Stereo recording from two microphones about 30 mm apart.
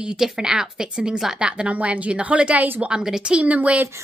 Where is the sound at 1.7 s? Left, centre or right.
Right.